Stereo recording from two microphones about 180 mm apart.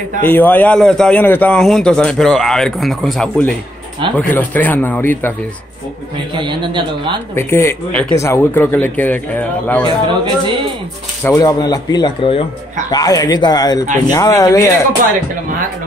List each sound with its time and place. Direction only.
0.2 s a man's voice: 10° left (ahead or behind)
6.3 s speech: 25° right (ahead or behind)
7.3 s speech: 15° left (ahead or behind)
9.8 s speech: 25° right (ahead or behind)
11.2 s a man's voice: 20° left (ahead or behind)